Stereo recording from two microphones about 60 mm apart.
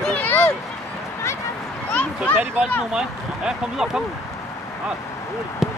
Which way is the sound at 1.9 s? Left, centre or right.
Left.